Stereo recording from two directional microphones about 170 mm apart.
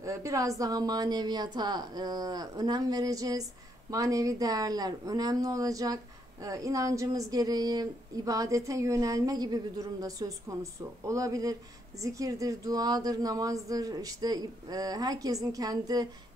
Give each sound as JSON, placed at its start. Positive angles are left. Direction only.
{"t": 0.0, "sound": "speech", "side_deg": -20}